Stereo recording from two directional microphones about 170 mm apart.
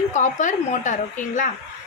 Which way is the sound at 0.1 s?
45° left (ahead or behind).